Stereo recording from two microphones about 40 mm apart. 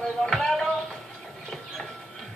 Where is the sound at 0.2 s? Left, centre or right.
Centre.